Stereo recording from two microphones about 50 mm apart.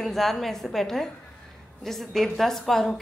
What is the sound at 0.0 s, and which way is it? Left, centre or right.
A woman's voice, centre.